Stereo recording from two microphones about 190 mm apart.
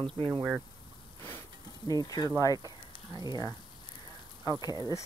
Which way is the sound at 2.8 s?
25° left (ahead or behind).